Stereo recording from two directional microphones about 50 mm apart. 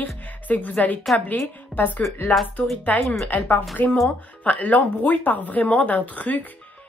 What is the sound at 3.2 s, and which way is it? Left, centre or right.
Speech, left.